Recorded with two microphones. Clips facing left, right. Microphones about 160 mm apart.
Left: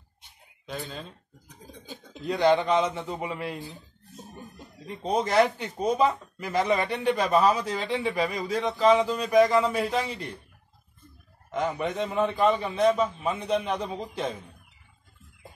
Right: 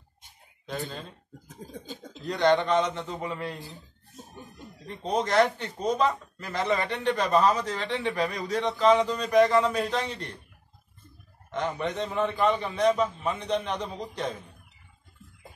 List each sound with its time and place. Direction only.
1.5 s speech: 45° right (ahead or behind)
2.2 s speech: 10° left (ahead or behind)
4.8 s speech: 10° left (ahead or behind)
11.5 s speech: 5° left (ahead or behind)